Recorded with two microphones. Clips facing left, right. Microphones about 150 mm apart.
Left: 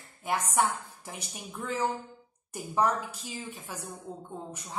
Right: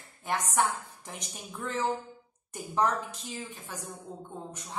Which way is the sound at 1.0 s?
10° left (ahead or behind).